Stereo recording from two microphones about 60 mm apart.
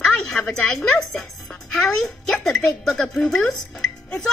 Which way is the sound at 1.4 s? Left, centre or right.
Centre.